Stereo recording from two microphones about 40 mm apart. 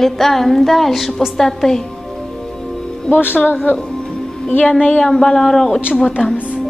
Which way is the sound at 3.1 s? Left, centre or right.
Left.